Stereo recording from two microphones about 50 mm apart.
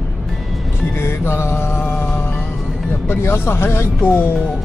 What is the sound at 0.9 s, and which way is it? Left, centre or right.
Mantra, left.